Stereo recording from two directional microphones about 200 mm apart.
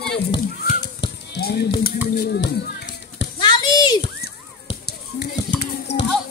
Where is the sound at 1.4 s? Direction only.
50° left (ahead or behind).